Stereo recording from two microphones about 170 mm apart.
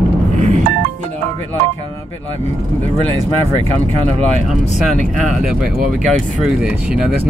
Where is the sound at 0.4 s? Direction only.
45° right (ahead or behind).